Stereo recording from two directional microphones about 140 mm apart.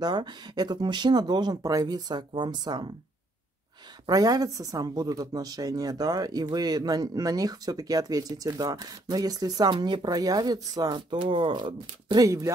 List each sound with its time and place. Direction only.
0.0 s speech: 30° right (ahead or behind)
4.0 s speech: 25° right (ahead or behind)